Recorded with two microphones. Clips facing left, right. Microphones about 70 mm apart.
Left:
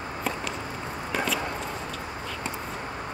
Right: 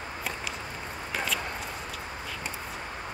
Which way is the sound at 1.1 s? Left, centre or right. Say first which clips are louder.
Left 4 dB; centre.